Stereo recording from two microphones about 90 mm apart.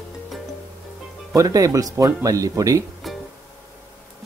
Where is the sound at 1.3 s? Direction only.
40° right (ahead or behind).